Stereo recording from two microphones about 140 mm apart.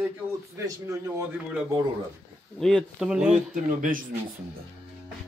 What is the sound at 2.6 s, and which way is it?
Speech, 5° left (ahead or behind).